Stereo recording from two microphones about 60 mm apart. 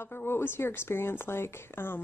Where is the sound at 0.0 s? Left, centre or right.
Left.